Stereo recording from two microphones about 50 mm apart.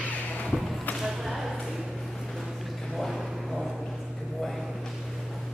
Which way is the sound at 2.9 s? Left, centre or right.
Centre.